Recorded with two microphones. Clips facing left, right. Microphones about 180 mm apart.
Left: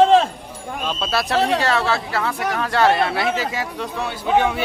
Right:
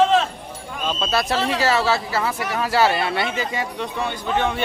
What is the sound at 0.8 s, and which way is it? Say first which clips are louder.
Speech: right 1 dB; centre (ahead or behind).